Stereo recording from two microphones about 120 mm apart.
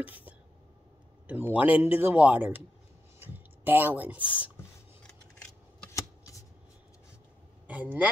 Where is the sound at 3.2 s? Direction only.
15° right (ahead or behind).